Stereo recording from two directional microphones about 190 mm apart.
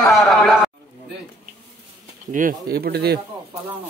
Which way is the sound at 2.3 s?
50° right (ahead or behind).